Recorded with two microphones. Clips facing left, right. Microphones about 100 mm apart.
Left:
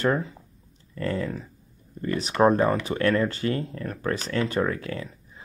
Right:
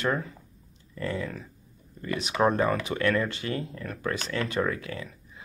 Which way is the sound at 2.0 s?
35° left (ahead or behind).